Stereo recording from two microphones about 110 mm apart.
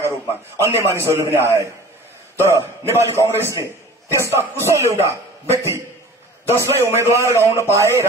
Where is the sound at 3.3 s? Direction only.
20° right (ahead or behind).